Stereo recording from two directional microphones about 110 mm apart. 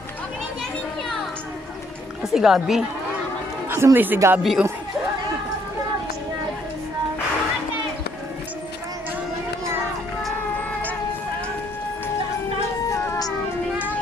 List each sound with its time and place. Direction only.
2.3 s speech: 5° right (ahead or behind)
3.7 s speech: 20° right (ahead or behind)
4.4 s speech: centre (ahead or behind)
12.9 s music: 30° left (ahead or behind)